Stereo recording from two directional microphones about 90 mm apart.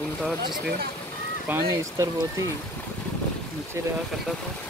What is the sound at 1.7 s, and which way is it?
Speech, 35° right (ahead or behind).